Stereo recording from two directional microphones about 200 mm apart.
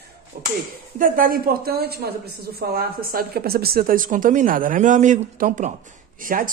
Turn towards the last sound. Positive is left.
turn(degrees=-45)  # may be behind; listen again after turning